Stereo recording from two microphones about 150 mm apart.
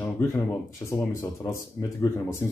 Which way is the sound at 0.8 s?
20° left (ahead or behind).